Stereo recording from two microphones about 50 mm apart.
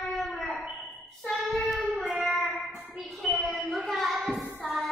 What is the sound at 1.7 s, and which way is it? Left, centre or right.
Music, centre.